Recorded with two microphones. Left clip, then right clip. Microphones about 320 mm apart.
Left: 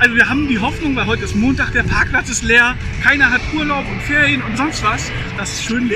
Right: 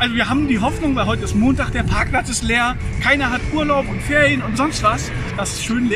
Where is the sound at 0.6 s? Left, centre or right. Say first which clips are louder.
Left 1 dB; centre.